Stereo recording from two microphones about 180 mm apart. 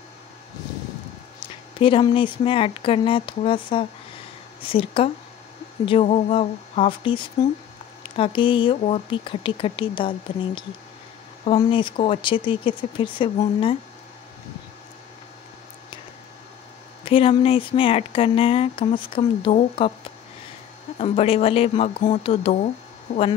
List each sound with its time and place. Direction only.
1.4 s a woman's voice: 30° left (ahead or behind)
17.0 s speech: 30° left (ahead or behind)
21.0 s a woman's voice: 35° left (ahead or behind)
23.1 s speech: 50° left (ahead or behind)